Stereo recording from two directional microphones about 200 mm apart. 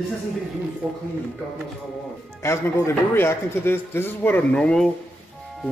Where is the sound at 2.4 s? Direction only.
15° left (ahead or behind).